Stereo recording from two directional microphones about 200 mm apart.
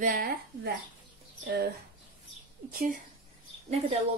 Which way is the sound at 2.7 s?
40° right (ahead or behind).